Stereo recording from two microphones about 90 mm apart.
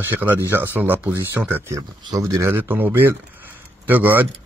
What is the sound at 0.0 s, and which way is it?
A man's voice, 20° right (ahead or behind).